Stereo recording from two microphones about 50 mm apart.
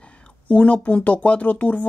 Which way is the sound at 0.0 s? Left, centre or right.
Left.